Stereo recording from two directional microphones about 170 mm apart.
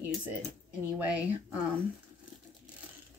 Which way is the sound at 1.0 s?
5° right (ahead or behind).